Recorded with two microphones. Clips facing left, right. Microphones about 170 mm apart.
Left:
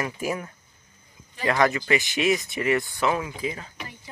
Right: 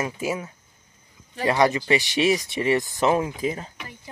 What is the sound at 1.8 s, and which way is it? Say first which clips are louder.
Speech: right 3 dB; 30° right (ahead or behind).